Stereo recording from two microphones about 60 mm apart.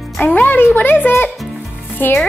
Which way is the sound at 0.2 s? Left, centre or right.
Left.